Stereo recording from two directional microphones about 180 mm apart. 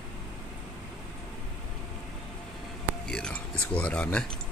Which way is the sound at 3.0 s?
5° left (ahead or behind).